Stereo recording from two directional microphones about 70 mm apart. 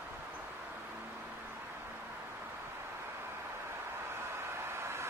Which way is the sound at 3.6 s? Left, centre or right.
Right.